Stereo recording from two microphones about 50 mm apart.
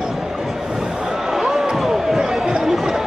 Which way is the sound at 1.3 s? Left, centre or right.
Centre.